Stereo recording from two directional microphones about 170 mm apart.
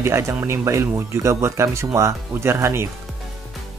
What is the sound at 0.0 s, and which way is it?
Speech, 15° right (ahead or behind).